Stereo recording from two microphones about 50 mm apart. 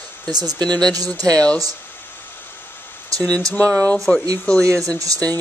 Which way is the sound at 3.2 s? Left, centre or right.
Left.